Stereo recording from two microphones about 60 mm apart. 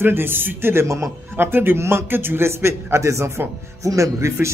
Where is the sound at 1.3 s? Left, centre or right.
Right.